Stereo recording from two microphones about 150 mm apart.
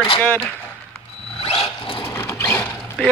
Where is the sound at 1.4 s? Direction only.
40° left (ahead or behind).